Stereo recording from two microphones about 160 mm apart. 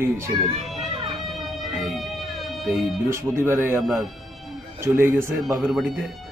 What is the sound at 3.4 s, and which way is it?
A man's voice, 15° right (ahead or behind).